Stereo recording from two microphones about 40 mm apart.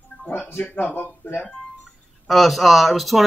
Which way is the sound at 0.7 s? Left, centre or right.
Left.